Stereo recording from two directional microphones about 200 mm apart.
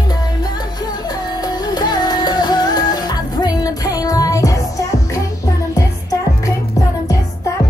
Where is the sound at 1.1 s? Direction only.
20° left (ahead or behind).